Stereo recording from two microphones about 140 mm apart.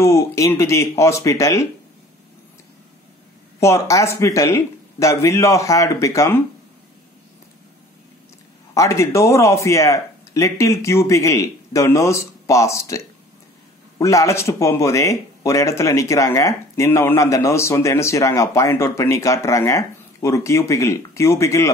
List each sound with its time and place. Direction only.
0.0 s speech: 20° left (ahead or behind)
3.5 s speech: 20° left (ahead or behind)
8.7 s speech: 20° left (ahead or behind)